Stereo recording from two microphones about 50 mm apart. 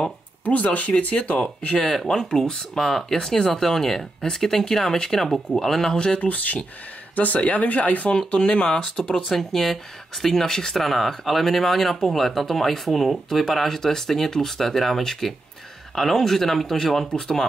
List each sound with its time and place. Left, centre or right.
0.5 s speech: left
6.2 s speech: left
9.3 s speech: centre
17.1 s speech: centre